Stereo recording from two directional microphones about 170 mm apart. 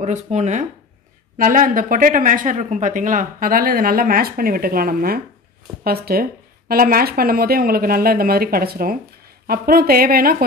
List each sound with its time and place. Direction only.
0.0 s speech: 40° right (ahead or behind); by 10.3 s 60° right (ahead or behind)